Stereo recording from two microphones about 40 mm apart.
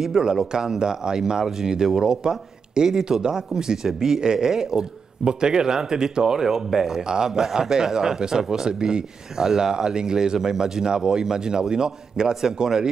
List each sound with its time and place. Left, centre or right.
0.0 s speech: centre